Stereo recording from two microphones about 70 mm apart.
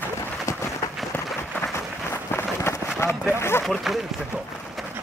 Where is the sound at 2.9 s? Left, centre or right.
Left.